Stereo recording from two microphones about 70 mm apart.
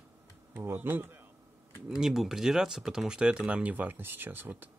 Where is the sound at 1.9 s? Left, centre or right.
Centre.